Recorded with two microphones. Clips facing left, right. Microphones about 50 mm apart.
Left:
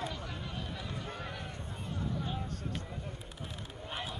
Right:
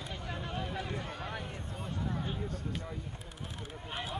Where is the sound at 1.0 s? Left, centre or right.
Centre.